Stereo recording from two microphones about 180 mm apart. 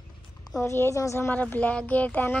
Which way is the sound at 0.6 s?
15° left (ahead or behind).